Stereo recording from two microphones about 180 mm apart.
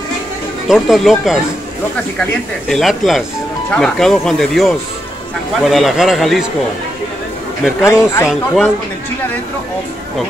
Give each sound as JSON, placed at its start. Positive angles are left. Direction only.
{"t": 0.7, "sound": "speech", "side_deg": 0}
{"t": 2.7, "sound": "speech", "side_deg": 0}
{"t": 7.8, "sound": "speech", "side_deg": 15}